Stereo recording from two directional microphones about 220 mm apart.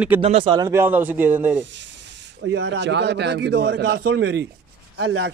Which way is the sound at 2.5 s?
55° right (ahead or behind).